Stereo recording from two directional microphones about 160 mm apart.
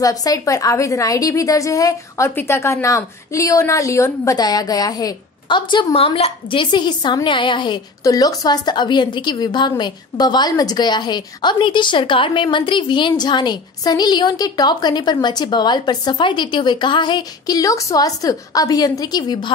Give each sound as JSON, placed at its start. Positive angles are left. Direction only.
{"t": 0.0, "sound": "a woman's voice", "side_deg": 20}